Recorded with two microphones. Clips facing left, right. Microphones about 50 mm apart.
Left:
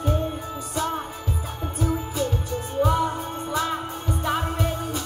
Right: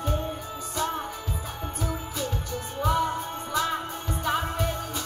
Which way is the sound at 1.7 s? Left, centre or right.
Centre.